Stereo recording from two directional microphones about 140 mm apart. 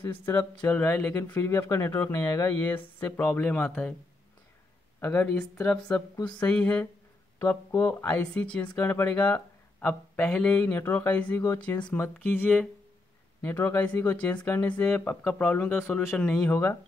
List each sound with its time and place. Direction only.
0.0 s speech: 15° left (ahead or behind)
5.0 s speech: 15° left (ahead or behind)
6.1 s a sound: 30° left (ahead or behind)
6.4 s speech: 10° left (ahead or behind)